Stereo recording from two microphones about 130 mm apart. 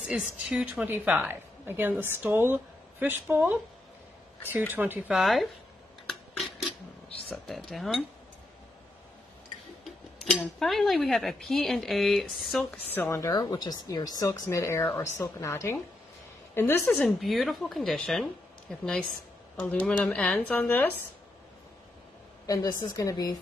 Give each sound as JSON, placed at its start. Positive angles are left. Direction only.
{"t": 0.5, "sound": "a woman's voice", "side_deg": -10}
{"t": 4.7, "sound": "a woman's voice", "side_deg": -15}
{"t": 5.1, "sound": "speech", "side_deg": 0}
{"t": 6.0, "sound": "a sound", "side_deg": 0}
{"t": 7.4, "sound": "speech", "side_deg": 0}
{"t": 9.8, "sound": "speech", "side_deg": 0}
{"t": 12.7, "sound": "a woman's voice", "side_deg": 15}
{"t": 13.2, "sound": "a woman's voice", "side_deg": 30}
{"t": 17.2, "sound": "a woman's voice", "side_deg": 0}
{"t": 22.5, "sound": "a woman's voice", "side_deg": 30}